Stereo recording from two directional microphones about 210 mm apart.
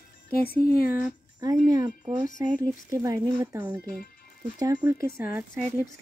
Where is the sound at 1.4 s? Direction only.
15° right (ahead or behind).